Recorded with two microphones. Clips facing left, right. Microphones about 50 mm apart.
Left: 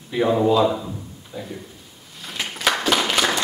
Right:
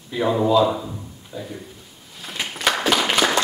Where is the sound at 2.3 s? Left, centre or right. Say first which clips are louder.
Even; centre.